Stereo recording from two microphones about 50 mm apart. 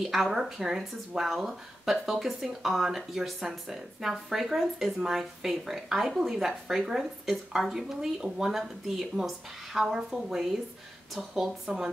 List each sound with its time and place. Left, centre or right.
0.0 s a woman's voice: centre